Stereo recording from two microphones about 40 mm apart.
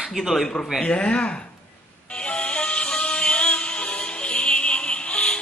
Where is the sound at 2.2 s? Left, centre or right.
Left.